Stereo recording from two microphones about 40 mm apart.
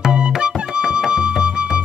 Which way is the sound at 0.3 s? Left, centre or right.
Centre.